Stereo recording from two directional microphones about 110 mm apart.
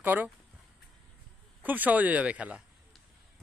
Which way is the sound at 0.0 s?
15° right (ahead or behind).